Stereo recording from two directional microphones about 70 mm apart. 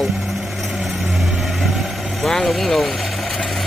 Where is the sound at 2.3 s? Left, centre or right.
Centre.